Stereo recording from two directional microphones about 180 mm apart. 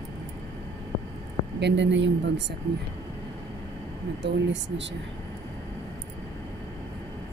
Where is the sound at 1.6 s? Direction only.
80° right.